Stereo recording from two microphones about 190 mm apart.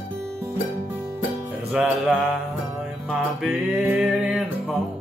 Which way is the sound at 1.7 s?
5° right (ahead or behind).